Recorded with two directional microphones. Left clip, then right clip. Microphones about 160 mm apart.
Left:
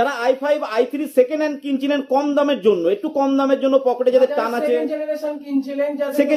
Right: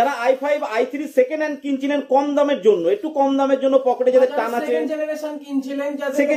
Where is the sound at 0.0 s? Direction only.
35° left (ahead or behind).